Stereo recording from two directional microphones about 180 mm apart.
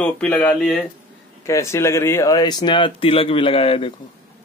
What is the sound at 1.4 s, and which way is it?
Speech, 15° left (ahead or behind).